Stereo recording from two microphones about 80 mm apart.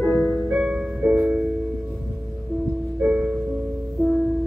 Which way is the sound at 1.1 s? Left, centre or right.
Right.